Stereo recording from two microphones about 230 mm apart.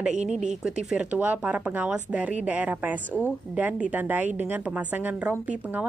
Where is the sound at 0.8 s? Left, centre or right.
Centre.